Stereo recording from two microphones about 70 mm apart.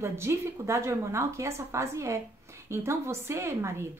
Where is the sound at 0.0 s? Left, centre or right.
Right.